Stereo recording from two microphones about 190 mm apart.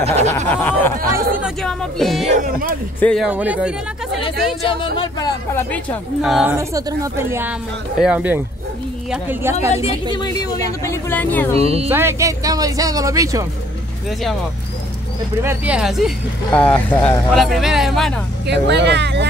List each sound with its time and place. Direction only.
0.0 s a sound: 35° right (ahead or behind)
0.5 s speech: 10° left (ahead or behind)
2.3 s speech: 45° right (ahead or behind)
3.0 s speech: 5° left (ahead or behind)
3.3 s speech: 5° right (ahead or behind)
4.6 s speech: 25° left (ahead or behind)
6.2 s speech: centre (ahead or behind)
6.5 s speech: 15° right (ahead or behind)
10.1 s speech: 20° left (ahead or behind)
11.6 s a sound: 30° right (ahead or behind)
11.9 s speech: 15° right (ahead or behind)
15.4 s speech: 5° right (ahead or behind)
16.5 s speech: 10° left (ahead or behind)
18.5 s speech: 65° right (ahead or behind)